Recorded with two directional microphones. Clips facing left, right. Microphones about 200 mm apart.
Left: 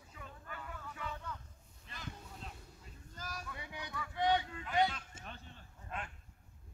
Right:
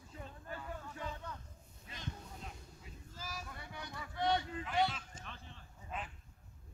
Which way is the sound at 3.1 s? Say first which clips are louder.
Even; 5° right (ahead or behind).